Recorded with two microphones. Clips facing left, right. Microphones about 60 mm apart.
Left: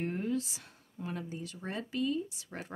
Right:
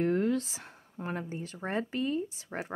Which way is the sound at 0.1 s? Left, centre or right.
Right.